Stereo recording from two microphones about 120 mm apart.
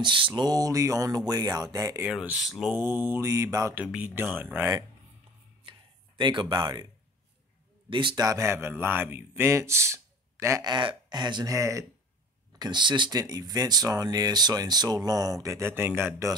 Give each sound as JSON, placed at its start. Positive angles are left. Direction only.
{"t": 0.0, "sound": "speech", "side_deg": -40}
{"t": 2.0, "sound": "speech", "side_deg": -5}
{"t": 2.7, "sound": "speech", "side_deg": -15}
{"t": 3.7, "sound": "speech", "side_deg": -10}
{"t": 5.7, "sound": "a sound", "side_deg": -40}
{"t": 7.9, "sound": "speech", "side_deg": -45}
{"t": 8.2, "sound": "speech", "side_deg": -25}
{"t": 10.6, "sound": "speech", "side_deg": -40}